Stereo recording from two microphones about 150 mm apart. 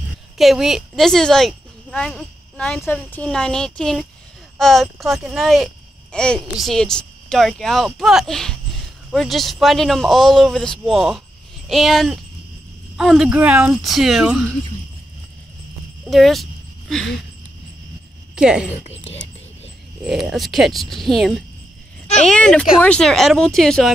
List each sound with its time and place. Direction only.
0.4 s speech: centre (ahead or behind)
16.1 s speech: centre (ahead or behind)
18.3 s speech: 5° right (ahead or behind)
18.9 s speech: 35° left (ahead or behind)
20.0 s speech: 5° right (ahead or behind)